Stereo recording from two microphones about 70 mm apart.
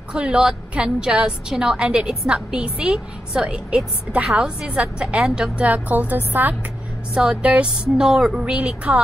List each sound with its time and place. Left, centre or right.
0.1 s a woman's voice: centre
5.7 s a woman's voice: right